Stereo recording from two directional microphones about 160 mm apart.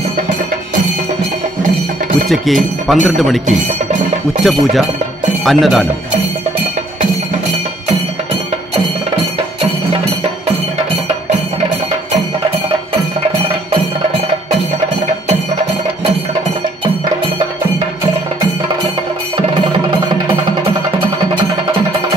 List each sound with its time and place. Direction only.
2.2 s speech: centre (ahead or behind)
4.4 s speech: centre (ahead or behind)
19.3 s music: 30° right (ahead or behind)